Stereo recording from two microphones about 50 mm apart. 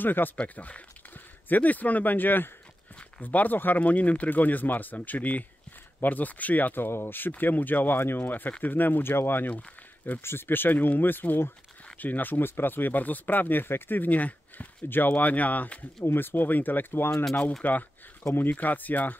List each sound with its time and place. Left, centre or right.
0.0 s speech: left
0.4 s speech: left
9.5 s speech: left
10.2 s speech: left